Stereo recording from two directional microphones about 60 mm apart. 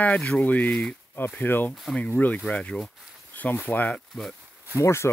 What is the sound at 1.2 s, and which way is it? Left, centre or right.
Speech, left.